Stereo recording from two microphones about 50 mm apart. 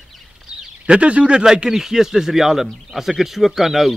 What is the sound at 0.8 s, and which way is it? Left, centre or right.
Speech, right.